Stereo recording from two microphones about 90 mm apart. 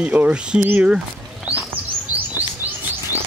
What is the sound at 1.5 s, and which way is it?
Chirp, 10° right (ahead or behind).